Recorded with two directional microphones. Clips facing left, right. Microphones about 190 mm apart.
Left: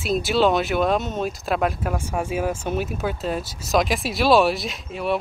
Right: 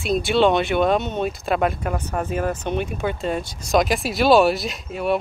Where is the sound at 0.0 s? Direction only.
Centre (ahead or behind).